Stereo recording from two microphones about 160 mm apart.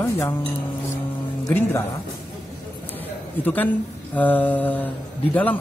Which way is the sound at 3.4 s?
10° left (ahead or behind).